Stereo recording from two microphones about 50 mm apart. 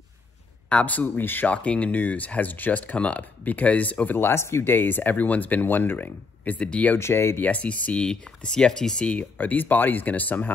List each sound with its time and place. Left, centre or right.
0.7 s speech: left
1.5 s speech: left
4.2 s speech: left
7.0 s speech: left
7.3 s speech: left
8.0 s speech: centre
9.2 s speech: left